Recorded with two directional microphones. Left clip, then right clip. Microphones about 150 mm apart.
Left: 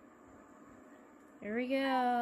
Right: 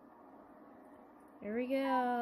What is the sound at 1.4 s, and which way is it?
Speech, 5° right (ahead or behind).